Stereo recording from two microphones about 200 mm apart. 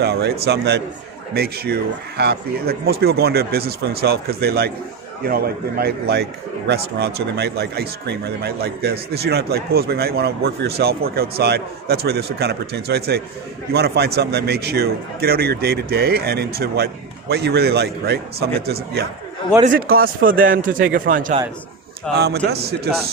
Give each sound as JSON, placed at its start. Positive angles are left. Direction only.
{"t": 0.0, "sound": "speech", "side_deg": -55}
{"t": 22.5, "sound": "speech", "side_deg": -55}